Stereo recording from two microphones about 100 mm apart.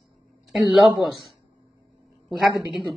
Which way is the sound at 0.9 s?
Centre (ahead or behind).